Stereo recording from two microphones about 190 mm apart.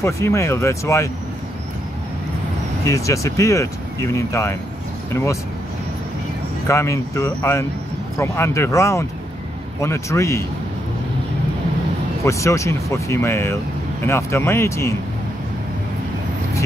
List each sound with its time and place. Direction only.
0.0 s speech: 15° left (ahead or behind)
2.8 s speech: 15° left (ahead or behind)
6.7 s speech: 15° left (ahead or behind)
12.3 s speech: 15° left (ahead or behind)